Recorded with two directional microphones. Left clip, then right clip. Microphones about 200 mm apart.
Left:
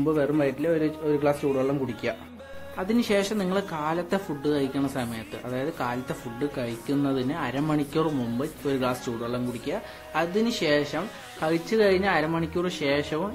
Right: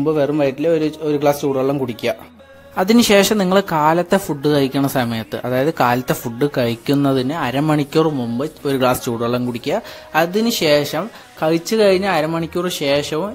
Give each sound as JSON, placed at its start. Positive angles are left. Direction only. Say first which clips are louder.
{"t": 0.0, "sound": "a man's voice", "louder": "right 7 dB", "side_deg": -35}